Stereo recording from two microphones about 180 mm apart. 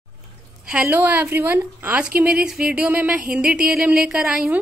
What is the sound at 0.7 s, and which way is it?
A woman's voice, 10° right (ahead or behind).